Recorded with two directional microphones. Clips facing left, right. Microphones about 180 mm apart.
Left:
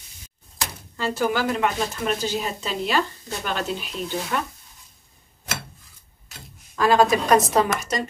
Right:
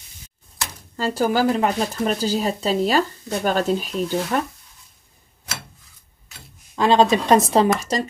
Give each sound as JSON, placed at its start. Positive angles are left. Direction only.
{"t": 0.9, "sound": "speech", "side_deg": -40}
{"t": 6.7, "sound": "a woman's voice", "side_deg": -25}